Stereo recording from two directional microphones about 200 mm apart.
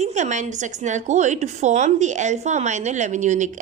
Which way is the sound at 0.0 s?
35° right (ahead or behind).